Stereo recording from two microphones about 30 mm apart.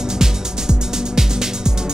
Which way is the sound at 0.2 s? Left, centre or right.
Centre.